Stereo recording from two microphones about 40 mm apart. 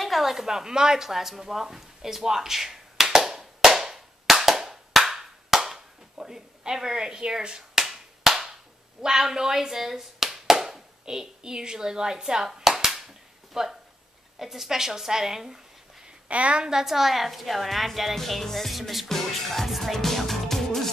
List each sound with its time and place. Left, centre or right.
0.0 s speech: centre
3.1 s clapping: centre
9.0 s a woman's voice: centre
16.3 s a woman's voice: right
16.6 s a woman's voice: centre
19.0 s music: centre